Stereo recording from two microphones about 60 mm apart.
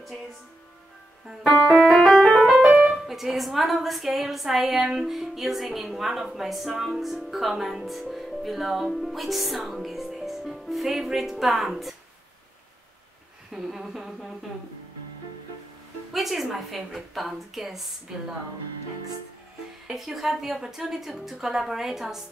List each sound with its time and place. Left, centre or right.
1.7 s music: centre
2.7 s piano: centre
3.1 s a woman's voice: centre
13.5 s a woman's voice: centre
16.1 s a woman's voice: centre
19.9 s a woman's voice: centre